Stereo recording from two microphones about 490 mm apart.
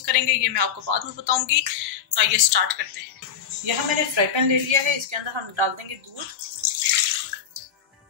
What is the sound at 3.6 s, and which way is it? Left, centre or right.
A woman's voice, right.